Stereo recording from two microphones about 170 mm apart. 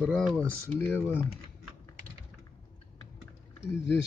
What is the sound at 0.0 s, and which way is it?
Speech, 5° left (ahead or behind).